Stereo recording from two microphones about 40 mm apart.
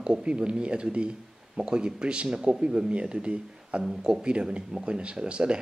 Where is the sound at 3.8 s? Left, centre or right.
Centre.